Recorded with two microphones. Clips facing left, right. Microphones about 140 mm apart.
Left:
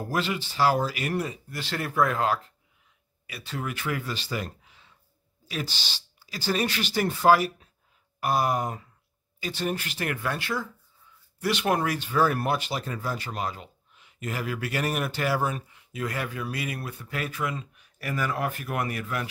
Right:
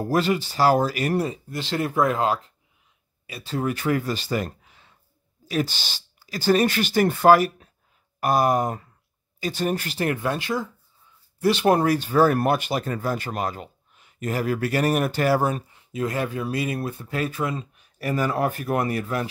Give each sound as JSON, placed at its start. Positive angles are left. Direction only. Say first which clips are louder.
{"t": 0.0, "sound": "speech", "louder": "right 7 dB", "side_deg": -40}
{"t": 11.4, "sound": "speech", "louder": "right 7 dB", "side_deg": -30}